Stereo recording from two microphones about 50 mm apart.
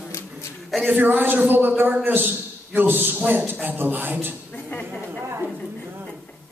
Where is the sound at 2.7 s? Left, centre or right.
Right.